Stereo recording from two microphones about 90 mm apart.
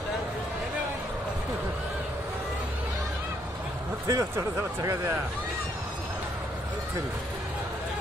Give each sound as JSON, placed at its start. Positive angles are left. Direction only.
{"t": 4.1, "sound": "speech", "side_deg": -35}